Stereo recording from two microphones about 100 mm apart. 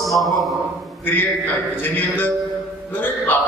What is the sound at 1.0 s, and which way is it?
A man's voice, 20° left (ahead or behind).